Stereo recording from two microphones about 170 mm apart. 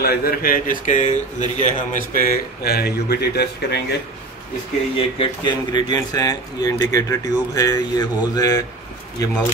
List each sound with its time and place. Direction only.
0.0 s speech: 60° left (ahead or behind)
4.9 s speech: 30° left (ahead or behind)